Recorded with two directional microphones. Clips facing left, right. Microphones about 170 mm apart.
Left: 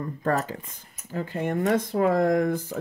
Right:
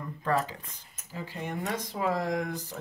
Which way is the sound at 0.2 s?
45° left (ahead or behind).